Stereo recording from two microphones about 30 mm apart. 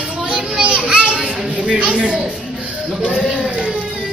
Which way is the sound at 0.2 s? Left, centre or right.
Right.